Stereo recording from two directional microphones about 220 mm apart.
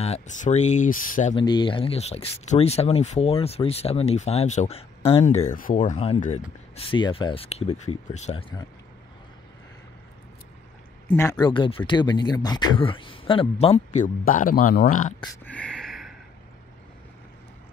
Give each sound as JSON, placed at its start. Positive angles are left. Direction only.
{"t": 0.0, "sound": "speech", "side_deg": 30}
{"t": 1.3, "sound": "speech", "side_deg": 20}
{"t": 11.1, "sound": "speech", "side_deg": 15}
{"t": 15.4, "sound": "a sound", "side_deg": 5}